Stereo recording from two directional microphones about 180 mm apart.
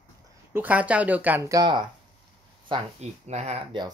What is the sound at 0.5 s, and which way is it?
Speech, 10° right (ahead or behind).